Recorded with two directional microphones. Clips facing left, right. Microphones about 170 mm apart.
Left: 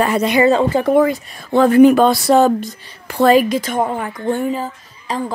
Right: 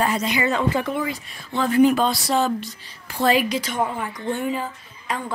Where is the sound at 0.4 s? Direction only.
30° left (ahead or behind).